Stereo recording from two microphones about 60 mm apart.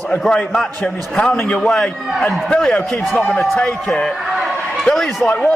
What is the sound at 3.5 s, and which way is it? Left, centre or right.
Speech, centre.